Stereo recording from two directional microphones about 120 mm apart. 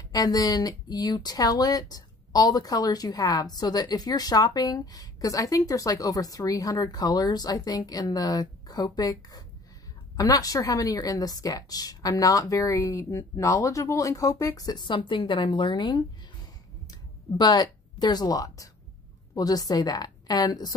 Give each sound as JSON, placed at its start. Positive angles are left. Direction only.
{"t": 0.1, "sound": "a woman's voice", "side_deg": 30}
{"t": 17.4, "sound": "speech", "side_deg": 35}